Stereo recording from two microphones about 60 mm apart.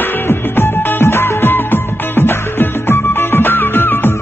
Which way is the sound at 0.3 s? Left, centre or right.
Left.